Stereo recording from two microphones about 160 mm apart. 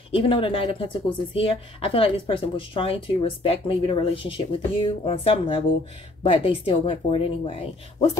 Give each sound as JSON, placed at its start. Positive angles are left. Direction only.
{"t": 0.1, "sound": "speech", "side_deg": 35}